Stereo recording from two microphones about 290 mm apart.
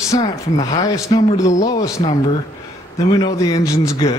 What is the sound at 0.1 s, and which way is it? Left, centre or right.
Speech, centre.